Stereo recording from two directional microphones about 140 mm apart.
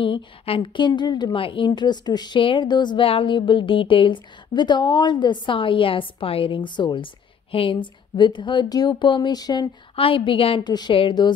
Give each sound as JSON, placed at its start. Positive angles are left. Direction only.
{"t": 0.0, "sound": "a woman's voice", "side_deg": 40}